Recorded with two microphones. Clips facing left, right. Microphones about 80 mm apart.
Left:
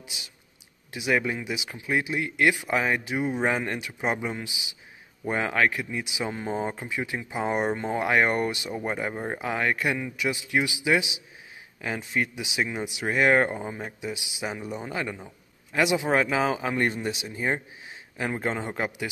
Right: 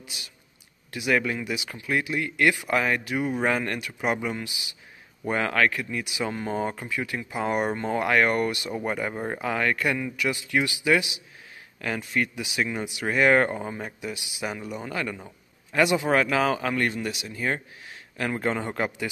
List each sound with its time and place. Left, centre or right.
0.9 s speech: centre
8.6 s speech: centre
14.0 s speech: centre
16.8 s speech: left; by 19.0 s centre